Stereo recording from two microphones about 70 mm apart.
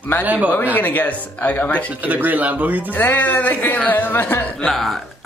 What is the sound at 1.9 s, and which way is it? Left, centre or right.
Speech, right.